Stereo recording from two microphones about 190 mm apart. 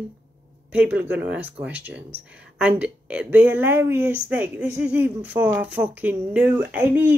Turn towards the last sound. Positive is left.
turn(degrees=-10)  # may be behind; listen again after turning